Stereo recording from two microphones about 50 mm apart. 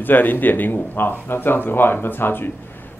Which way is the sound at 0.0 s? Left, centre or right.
Left.